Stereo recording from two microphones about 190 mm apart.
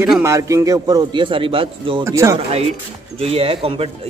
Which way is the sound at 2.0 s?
15° right (ahead or behind).